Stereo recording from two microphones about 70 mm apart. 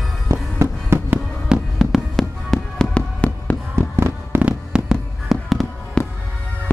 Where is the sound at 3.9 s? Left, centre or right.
Right.